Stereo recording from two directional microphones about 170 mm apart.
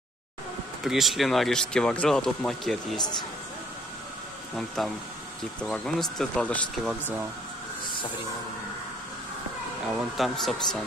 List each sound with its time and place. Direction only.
0.8 s speech: centre (ahead or behind)
3.0 s speech: 25° left (ahead or behind)
4.6 s speech: centre (ahead or behind)
10.1 s speech: centre (ahead or behind)